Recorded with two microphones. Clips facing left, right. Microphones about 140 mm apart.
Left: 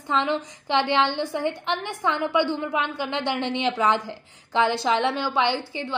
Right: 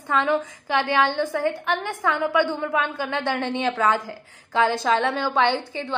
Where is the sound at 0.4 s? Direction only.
20° left (ahead or behind).